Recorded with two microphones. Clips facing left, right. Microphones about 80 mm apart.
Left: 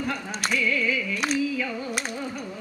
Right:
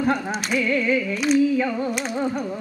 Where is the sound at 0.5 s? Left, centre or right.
Right.